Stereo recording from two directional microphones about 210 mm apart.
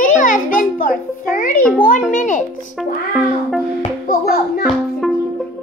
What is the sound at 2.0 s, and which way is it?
Speech, 40° left (ahead or behind).